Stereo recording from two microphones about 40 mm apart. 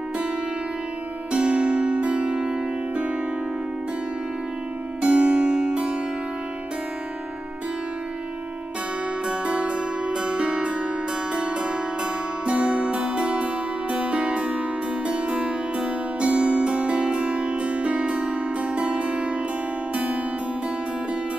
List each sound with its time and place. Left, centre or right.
1.3 s music: right
5.0 s music: right
9.3 s music: right